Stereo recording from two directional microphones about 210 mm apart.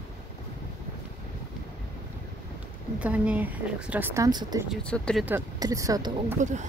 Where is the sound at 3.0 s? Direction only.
5° right (ahead or behind).